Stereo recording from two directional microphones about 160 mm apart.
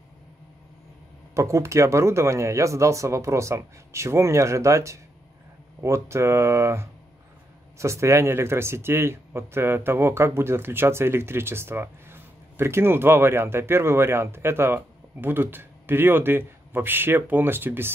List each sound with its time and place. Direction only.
1.3 s speech: 20° right (ahead or behind)